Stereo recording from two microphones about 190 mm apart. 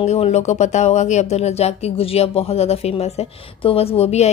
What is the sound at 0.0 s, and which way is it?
A woman's voice, 35° left (ahead or behind).